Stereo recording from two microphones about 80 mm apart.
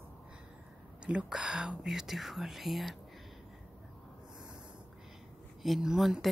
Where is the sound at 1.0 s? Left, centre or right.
Centre.